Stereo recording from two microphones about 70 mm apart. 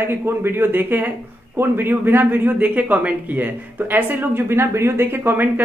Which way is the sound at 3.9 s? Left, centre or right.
Right.